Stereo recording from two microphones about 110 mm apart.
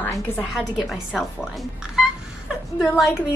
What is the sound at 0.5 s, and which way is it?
Speech, centre (ahead or behind).